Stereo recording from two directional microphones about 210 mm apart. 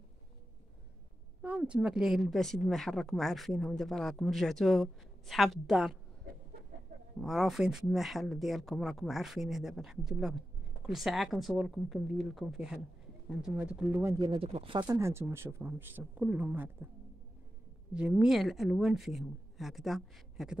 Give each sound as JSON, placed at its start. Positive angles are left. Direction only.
{"t": 1.4, "sound": "a woman's voice", "side_deg": -5}
{"t": 7.2, "sound": "a woman's voice", "side_deg": 0}
{"t": 14.4, "sound": "speech", "side_deg": -25}
{"t": 17.9, "sound": "a woman's voice", "side_deg": -5}